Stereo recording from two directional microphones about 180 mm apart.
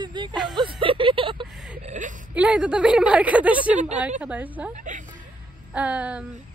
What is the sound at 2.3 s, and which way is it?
A woman's voice, 5° right (ahead or behind).